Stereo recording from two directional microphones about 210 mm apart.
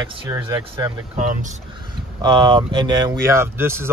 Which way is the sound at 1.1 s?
35° right (ahead or behind).